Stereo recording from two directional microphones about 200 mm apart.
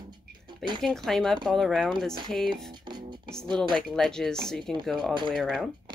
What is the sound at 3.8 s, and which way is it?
Speech, centre (ahead or behind).